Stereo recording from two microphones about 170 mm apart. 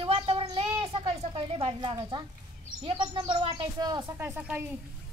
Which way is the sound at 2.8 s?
30° right (ahead or behind).